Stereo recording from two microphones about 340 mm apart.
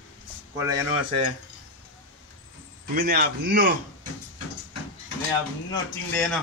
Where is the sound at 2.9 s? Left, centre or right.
Right.